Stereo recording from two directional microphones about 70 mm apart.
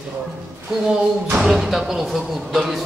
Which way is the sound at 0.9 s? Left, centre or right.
Centre.